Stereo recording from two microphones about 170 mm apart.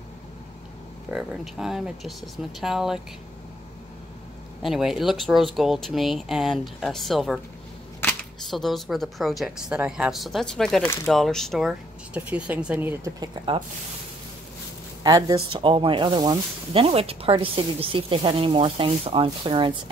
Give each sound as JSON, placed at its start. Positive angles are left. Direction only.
{"t": 1.1, "sound": "speech", "side_deg": 0}
{"t": 4.6, "sound": "speech", "side_deg": 0}
{"t": 8.0, "sound": "camera", "side_deg": 10}
{"t": 8.5, "sound": "speech", "side_deg": 0}
{"t": 13.2, "sound": "speech", "side_deg": -25}
{"t": 15.0, "sound": "speech", "side_deg": -20}
{"t": 15.3, "sound": "speech", "side_deg": -30}